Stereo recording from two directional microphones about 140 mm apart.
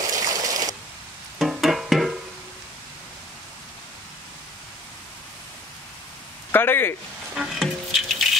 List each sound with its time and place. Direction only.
0.1 s a sound: 25° right (ahead or behind)
1.4 s music: centre (ahead or behind)
6.5 s speech: 15° left (ahead or behind)
7.3 s music: centre (ahead or behind)